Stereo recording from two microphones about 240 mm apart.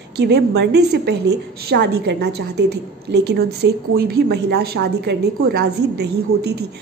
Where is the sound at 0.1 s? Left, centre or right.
Right.